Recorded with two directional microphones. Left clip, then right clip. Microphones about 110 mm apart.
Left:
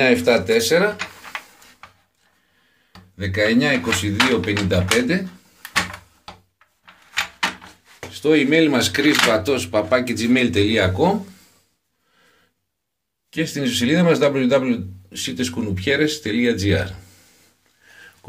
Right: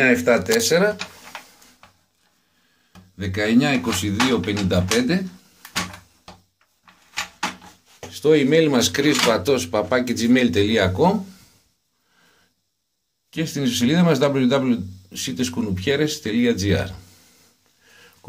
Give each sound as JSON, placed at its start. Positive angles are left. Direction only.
{"t": 0.1, "sound": "speech", "side_deg": 15}
{"t": 0.6, "sound": "speech", "side_deg": 0}
{"t": 3.2, "sound": "speech", "side_deg": 0}
{"t": 8.1, "sound": "speech", "side_deg": -15}
{"t": 13.3, "sound": "speech", "side_deg": -5}